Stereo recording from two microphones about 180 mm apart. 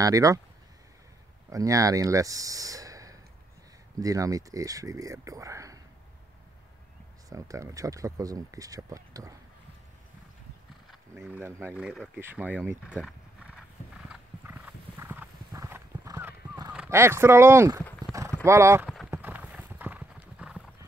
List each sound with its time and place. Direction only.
0.0 s speech: 20° right (ahead or behind)
1.5 s speech: 20° right (ahead or behind)
7.2 s speech: 20° right (ahead or behind)
10.9 s speech: 5° right (ahead or behind)
12.2 s horse: 10° right (ahead or behind)
16.7 s speech: 10° right (ahead or behind)
19.0 s clip-clop: 10° right (ahead or behind)